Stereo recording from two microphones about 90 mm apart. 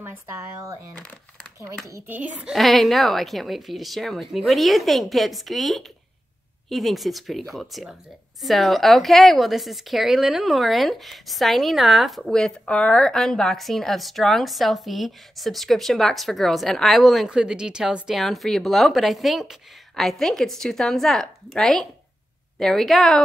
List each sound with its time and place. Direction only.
2.0 s a child's voice: 15° right (ahead or behind)
2.5 s a woman's voice: centre (ahead or behind)